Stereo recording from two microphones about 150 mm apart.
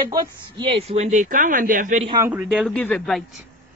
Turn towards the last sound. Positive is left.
turn(degrees=5)  # may be behind; listen again after turning